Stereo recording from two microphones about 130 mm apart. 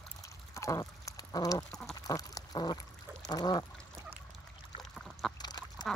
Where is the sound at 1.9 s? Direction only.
30° left (ahead or behind).